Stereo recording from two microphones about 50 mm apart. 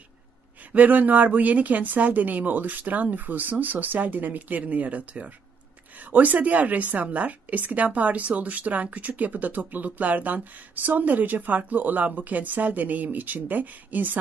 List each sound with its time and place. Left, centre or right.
0.7 s speech: right